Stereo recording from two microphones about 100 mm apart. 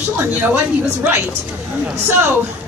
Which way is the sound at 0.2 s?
20° right (ahead or behind).